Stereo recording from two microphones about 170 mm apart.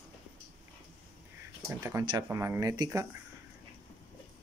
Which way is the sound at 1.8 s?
15° right (ahead or behind).